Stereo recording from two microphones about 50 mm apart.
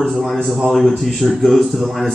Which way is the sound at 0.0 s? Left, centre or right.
Centre.